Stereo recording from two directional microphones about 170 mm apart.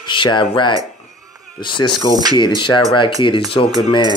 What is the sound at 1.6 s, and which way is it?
Speech, 30° left (ahead or behind).